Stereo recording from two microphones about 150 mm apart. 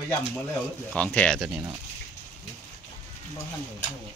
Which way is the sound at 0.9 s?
10° left (ahead or behind).